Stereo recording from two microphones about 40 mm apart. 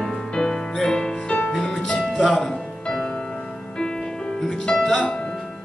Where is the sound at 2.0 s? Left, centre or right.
Centre.